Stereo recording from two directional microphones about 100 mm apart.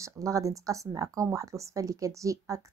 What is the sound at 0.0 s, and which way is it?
Speech, 35° right (ahead or behind).